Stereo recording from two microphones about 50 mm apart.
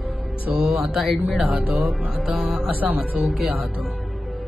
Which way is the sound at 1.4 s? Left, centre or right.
Right.